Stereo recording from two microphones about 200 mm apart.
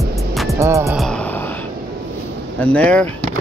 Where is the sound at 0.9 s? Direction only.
Centre (ahead or behind).